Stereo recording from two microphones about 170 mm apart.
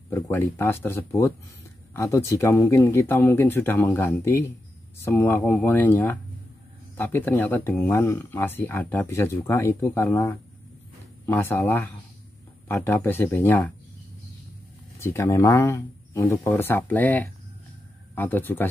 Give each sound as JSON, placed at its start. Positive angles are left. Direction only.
{"t": 0.1, "sound": "speech", "side_deg": 15}
{"t": 11.2, "sound": "speech", "side_deg": 10}
{"t": 15.0, "sound": "speech", "side_deg": 15}